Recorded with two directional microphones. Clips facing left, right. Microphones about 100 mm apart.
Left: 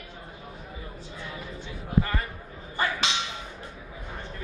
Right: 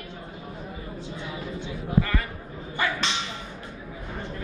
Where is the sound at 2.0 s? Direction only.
30° left (ahead or behind).